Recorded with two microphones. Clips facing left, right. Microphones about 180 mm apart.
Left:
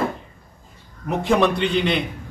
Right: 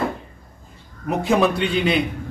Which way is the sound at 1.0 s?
Centre (ahead or behind).